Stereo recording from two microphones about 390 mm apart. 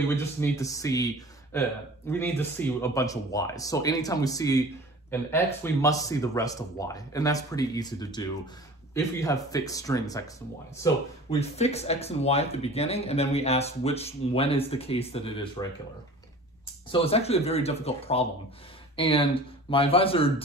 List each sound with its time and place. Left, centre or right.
0.1 s speech: centre
16.9 s speech: centre